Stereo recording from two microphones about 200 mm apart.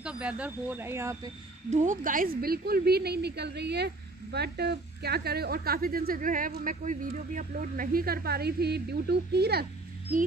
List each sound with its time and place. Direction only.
0.0 s speech: 5° right (ahead or behind)
1.7 s a woman's voice: 40° right (ahead or behind)